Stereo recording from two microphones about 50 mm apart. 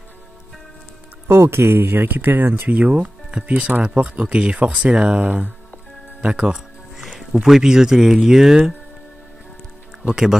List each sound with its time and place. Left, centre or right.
1.5 s speech: right
2.7 s speech: right
6.2 s music: centre
7.4 s speech: centre
10.0 s speech: centre